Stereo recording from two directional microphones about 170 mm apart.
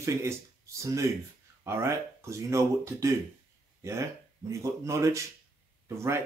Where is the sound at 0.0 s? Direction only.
15° right (ahead or behind).